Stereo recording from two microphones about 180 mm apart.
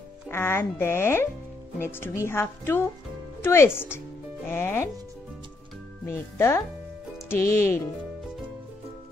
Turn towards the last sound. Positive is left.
turn(degrees=15)  # may be behind; listen again after turning